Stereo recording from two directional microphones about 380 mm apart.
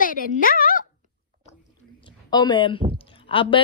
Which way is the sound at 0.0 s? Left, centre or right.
Left.